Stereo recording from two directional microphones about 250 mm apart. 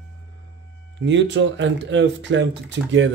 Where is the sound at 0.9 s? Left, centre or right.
Right.